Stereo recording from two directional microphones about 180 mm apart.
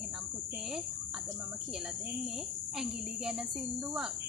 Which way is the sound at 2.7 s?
5° right (ahead or behind).